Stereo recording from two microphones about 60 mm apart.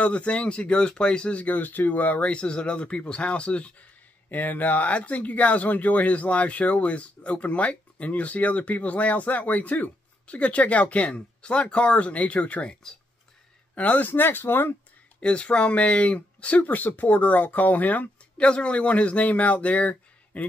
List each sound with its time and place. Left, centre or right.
0.0 s speech: centre
13.7 s speech: left
15.1 s speech: centre